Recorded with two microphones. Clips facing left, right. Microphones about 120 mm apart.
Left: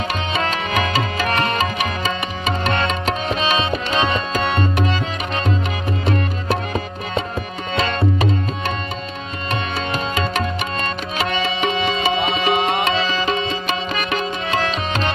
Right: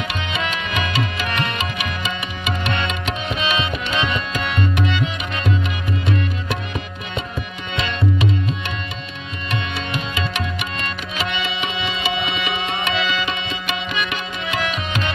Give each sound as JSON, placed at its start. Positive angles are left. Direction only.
{"t": 0.1, "sound": "music", "side_deg": 40}
{"t": 7.7, "sound": "tabla", "side_deg": 40}
{"t": 9.5, "sound": "music", "side_deg": 35}